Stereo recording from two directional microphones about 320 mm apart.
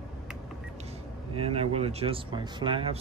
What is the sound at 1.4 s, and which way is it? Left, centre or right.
Speech, centre.